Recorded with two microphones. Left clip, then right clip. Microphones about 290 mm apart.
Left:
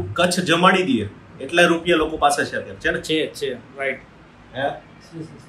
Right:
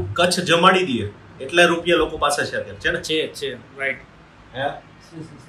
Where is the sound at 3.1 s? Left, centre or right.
Centre.